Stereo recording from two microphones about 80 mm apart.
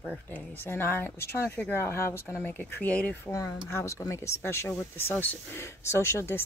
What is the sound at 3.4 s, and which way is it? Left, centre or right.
Speech, left.